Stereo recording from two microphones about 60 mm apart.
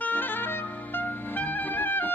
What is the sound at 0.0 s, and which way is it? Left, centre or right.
Music, left.